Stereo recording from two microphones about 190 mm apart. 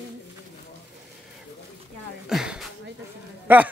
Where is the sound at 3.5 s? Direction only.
10° right (ahead or behind).